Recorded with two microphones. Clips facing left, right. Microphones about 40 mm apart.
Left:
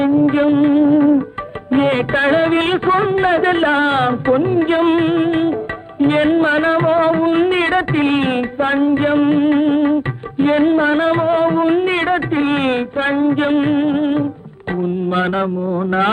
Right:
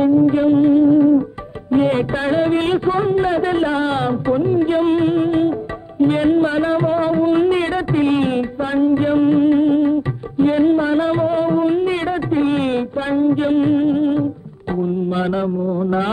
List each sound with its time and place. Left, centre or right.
0.1 s music: left
1.7 s a sound: left
5.9 s music: left
15.1 s mantra: left